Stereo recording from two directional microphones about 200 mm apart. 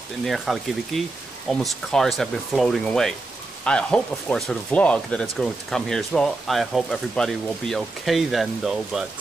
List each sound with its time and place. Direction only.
0.2 s speech: centre (ahead or behind)